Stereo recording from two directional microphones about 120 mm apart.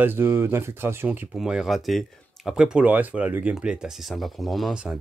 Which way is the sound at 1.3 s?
5° right (ahead or behind).